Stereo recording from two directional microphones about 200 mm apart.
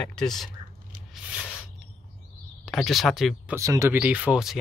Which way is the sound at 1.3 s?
5° right (ahead or behind).